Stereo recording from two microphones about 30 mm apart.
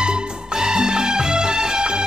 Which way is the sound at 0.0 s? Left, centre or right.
Right.